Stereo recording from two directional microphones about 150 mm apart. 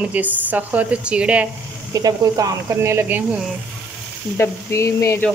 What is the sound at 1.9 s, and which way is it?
Speech, 25° right (ahead or behind).